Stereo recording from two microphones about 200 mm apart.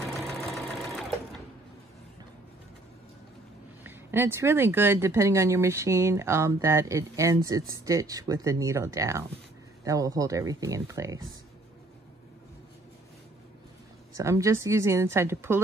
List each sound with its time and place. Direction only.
0.6 s sewing machine: centre (ahead or behind)
3.8 s speech: 10° right (ahead or behind)
14.1 s speech: 15° right (ahead or behind)